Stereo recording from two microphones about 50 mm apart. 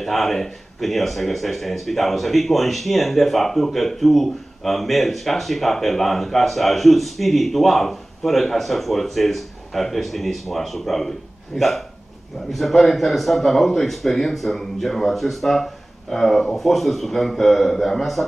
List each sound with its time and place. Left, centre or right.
0.0 s a man's voice: centre